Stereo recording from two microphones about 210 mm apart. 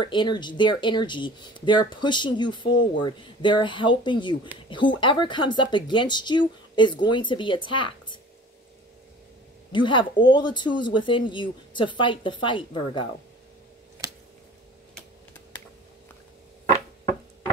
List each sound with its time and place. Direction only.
0.0 s speech: 20° left (ahead or behind)
9.7 s speech: 20° left (ahead or behind)
14.0 s squish: 15° right (ahead or behind)